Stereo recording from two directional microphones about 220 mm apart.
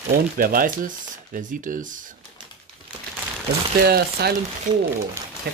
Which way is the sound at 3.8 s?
45° right (ahead or behind).